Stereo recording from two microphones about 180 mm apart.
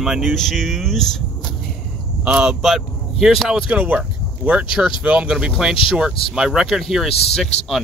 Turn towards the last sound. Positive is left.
turn(degrees=35)  # may be behind; listen again after turning